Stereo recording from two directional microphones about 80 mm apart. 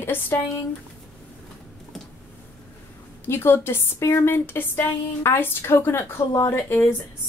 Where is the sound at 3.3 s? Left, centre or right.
Left.